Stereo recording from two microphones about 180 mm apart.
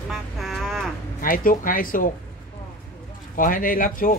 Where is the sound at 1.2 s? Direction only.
50° left (ahead or behind).